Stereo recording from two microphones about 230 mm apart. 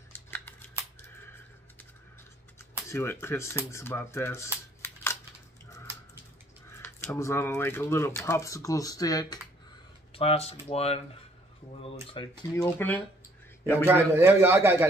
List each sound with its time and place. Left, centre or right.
0.1 s scissors: centre
2.9 s speech: centre
6.7 s speech: centre
12.7 s speech: centre
13.8 s a man's voice: centre